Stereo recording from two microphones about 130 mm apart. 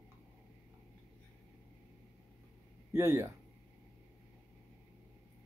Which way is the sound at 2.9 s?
20° right (ahead or behind).